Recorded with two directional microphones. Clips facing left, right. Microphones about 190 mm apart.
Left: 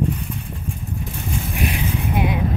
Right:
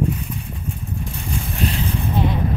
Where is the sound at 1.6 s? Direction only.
15° left (ahead or behind).